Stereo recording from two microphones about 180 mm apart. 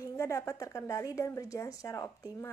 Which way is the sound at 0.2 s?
15° left (ahead or behind).